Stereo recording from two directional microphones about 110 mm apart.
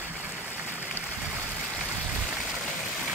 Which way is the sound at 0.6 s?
15° right (ahead or behind).